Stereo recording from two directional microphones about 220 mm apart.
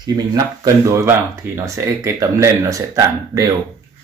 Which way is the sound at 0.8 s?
10° right (ahead or behind).